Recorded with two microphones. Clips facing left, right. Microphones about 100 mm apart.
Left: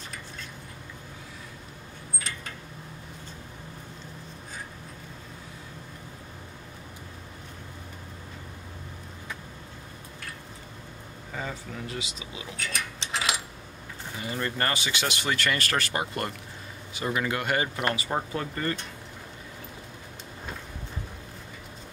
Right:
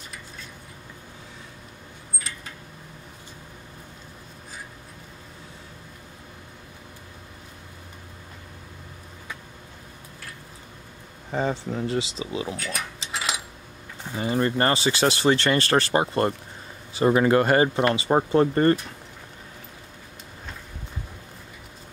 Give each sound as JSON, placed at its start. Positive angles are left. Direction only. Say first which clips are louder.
{"t": 11.3, "sound": "speech", "louder": "right 10 dB", "side_deg": -30}
{"t": 12.5, "sound": "keys jangling", "louder": "right 2 dB", "side_deg": -5}
{"t": 14.2, "sound": "speech", "louder": "right 8 dB", "side_deg": -30}